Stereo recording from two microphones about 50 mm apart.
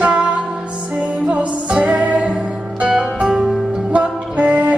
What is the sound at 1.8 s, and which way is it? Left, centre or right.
Music, right.